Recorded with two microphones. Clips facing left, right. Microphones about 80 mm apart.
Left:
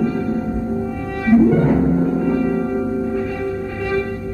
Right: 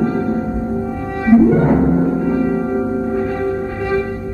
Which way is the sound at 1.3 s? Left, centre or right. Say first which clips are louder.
Right 2 dB; right.